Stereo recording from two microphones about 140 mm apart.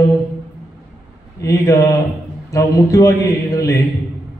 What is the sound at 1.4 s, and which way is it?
A man's voice, 25° left (ahead or behind).